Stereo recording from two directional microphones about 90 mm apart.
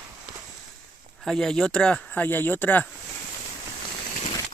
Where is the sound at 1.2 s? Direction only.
5° left (ahead or behind); by 2.9 s 20° left (ahead or behind).